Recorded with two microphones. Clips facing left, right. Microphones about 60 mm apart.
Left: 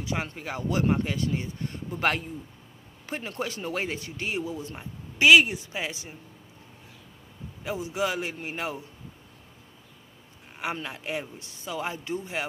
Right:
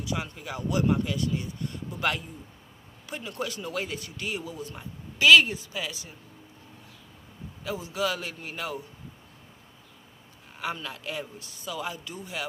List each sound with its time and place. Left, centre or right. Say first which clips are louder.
0.0 s speech: left 1 dB; left
7.6 s speech: left 1 dB; left
10.6 s speech: left 1 dB; left